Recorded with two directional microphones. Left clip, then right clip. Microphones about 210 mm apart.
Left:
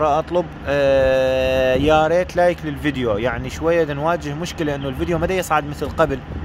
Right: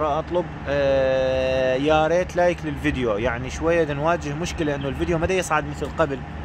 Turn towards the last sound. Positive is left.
turn(degrees=15)  # may be behind; listen again after turning